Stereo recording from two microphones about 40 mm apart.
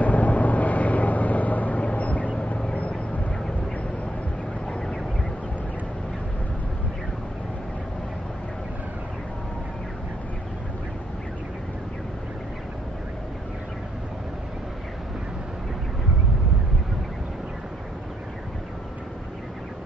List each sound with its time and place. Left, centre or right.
0.0 s vehicle: left